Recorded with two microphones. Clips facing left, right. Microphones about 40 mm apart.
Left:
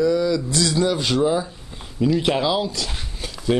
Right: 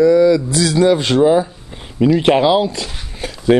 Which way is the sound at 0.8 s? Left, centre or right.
Right.